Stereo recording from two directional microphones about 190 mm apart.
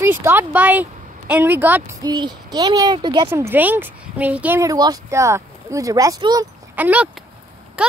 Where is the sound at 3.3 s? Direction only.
10° right (ahead or behind).